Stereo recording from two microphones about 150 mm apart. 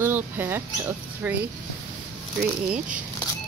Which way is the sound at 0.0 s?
15° right (ahead or behind).